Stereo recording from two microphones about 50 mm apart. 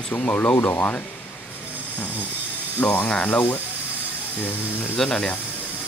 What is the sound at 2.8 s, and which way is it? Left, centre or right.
Speech, left.